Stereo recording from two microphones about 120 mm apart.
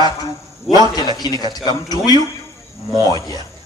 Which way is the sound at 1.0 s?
35° left (ahead or behind).